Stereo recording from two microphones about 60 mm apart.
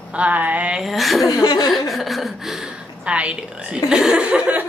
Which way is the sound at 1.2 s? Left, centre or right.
Left.